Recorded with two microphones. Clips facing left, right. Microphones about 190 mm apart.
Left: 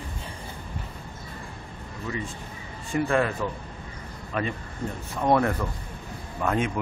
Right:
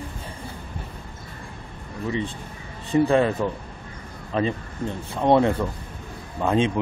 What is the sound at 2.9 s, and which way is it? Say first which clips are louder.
Speech: right 5 dB; 30° right (ahead or behind).